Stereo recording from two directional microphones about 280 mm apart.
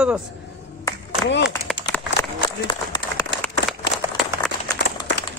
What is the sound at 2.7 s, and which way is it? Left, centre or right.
Applause, centre.